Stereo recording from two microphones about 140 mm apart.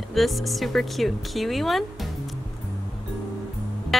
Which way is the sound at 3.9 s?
Centre (ahead or behind).